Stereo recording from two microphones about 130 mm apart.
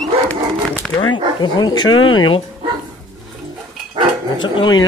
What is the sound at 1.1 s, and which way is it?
Speech, 35° left (ahead or behind).